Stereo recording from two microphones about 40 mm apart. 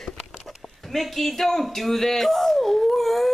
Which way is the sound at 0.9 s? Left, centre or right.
Centre.